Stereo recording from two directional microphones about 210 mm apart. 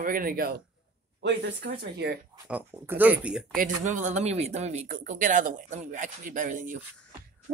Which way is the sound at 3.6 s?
35° right (ahead or behind).